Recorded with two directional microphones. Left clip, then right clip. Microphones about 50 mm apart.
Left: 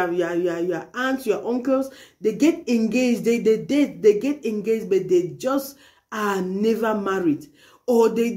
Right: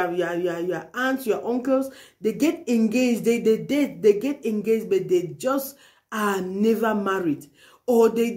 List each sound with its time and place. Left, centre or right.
0.0 s speech: right